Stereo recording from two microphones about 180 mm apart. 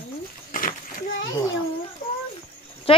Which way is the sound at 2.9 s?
30° left (ahead or behind).